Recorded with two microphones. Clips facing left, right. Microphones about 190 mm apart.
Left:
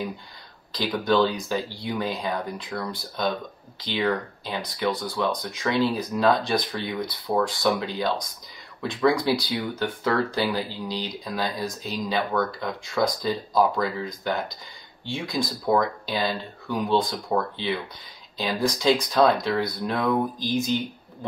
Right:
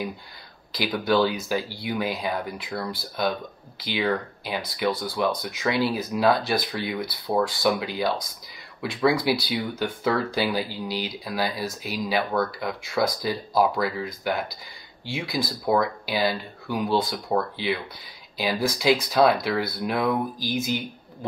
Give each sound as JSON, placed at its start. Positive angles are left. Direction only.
{"t": 0.7, "sound": "speech", "side_deg": -10}